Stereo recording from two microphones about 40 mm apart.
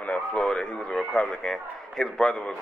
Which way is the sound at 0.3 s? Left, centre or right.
Left.